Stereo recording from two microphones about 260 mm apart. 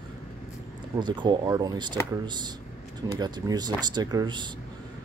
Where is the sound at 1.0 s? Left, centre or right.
Centre.